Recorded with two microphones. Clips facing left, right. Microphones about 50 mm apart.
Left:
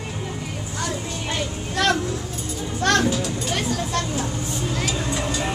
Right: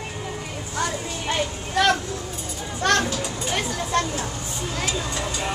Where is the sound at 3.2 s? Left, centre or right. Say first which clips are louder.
Left 1 dB; centre.